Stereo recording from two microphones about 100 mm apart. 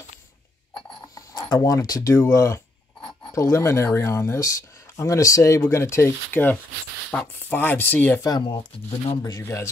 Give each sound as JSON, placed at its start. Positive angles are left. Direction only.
{"t": 1.1, "sound": "speech", "side_deg": 40}
{"t": 8.2, "sound": "speech", "side_deg": 40}
{"t": 9.4, "sound": "speech", "side_deg": 25}